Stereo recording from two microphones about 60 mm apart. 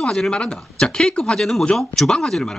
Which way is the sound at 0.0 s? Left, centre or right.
Centre.